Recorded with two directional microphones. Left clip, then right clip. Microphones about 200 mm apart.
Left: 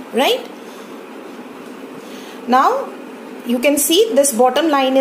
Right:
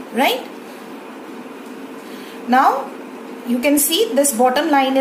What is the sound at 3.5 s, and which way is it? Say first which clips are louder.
A woman's voice: left 3 dB; 25° left (ahead or behind).